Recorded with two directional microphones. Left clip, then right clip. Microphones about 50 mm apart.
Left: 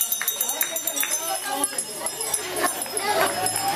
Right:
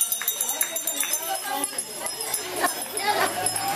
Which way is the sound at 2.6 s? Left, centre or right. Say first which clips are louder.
Right 1 dB; right.